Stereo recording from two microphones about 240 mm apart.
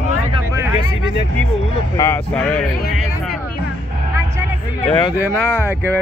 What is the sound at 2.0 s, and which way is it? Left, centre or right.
Speech, centre.